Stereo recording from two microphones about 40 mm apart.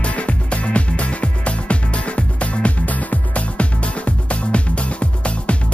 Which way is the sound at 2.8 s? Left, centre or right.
Left.